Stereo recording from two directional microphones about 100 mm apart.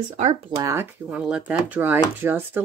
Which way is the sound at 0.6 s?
30° right (ahead or behind).